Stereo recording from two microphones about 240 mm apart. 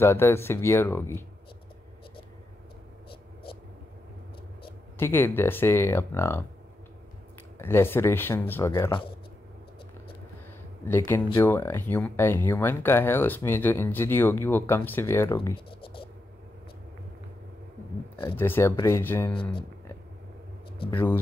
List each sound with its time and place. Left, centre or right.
0.0 s speech: centre
4.9 s speech: centre
7.5 s speech: centre
10.9 s speech: centre
15.5 s writing: left
18.3 s speech: centre
20.9 s speech: centre